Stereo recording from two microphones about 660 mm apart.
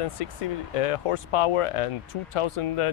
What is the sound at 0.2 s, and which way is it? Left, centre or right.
Speech, left.